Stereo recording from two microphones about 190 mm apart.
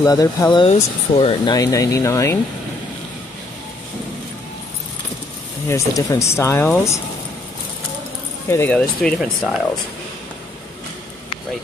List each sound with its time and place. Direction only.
0.0 s speech: 20° left (ahead or behind)
5.7 s speech: 15° left (ahead or behind)
8.5 s speech: 10° left (ahead or behind)